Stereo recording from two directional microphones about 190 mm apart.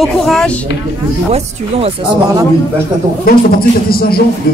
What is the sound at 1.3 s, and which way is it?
Speech, 35° right (ahead or behind).